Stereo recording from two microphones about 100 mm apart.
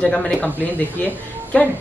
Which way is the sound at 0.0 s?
10° left (ahead or behind).